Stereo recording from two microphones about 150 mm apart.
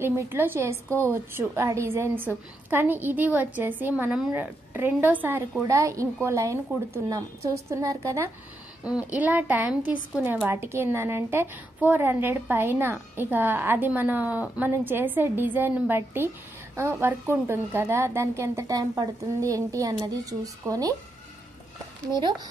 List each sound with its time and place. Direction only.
0.0 s a woman's voice: 15° right (ahead or behind)
8.8 s a woman's voice: 10° right (ahead or behind)
22.0 s speech: 25° right (ahead or behind)